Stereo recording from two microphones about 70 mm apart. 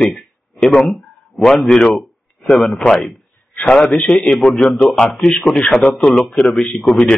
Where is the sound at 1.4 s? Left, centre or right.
Centre.